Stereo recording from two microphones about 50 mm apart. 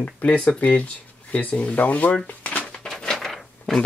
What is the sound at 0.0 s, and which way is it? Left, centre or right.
Speech, left.